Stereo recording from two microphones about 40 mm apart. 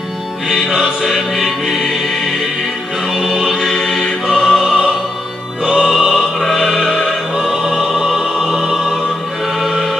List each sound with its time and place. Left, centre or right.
0.5 s music: centre
3.3 s music: centre
4.3 s opera: centre
5.7 s music: centre
7.5 s music: centre
8.5 s choir: centre